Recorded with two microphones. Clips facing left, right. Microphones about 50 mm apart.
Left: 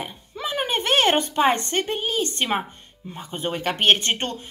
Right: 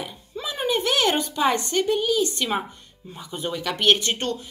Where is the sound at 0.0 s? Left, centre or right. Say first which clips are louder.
Left 2 dB; left.